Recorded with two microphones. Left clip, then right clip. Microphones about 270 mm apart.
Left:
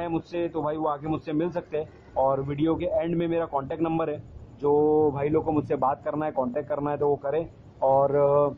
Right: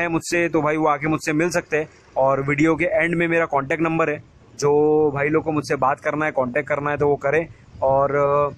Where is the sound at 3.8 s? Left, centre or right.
Right.